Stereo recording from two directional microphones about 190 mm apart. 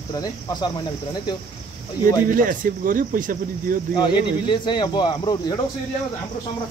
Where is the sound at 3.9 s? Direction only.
25° left (ahead or behind).